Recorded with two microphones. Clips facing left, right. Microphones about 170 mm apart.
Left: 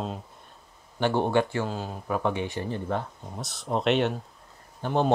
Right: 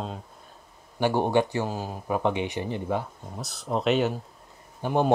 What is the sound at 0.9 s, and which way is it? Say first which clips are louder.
Speech: right 1 dB; 10° right (ahead or behind).